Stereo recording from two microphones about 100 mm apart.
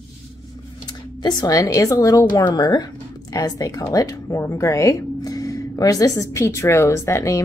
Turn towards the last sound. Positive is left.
turn(degrees=30)  # may be behind; listen again after turning